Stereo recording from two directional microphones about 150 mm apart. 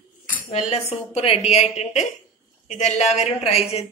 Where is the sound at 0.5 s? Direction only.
45° left (ahead or behind).